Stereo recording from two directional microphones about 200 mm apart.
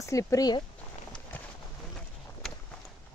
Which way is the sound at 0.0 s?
15° left (ahead or behind).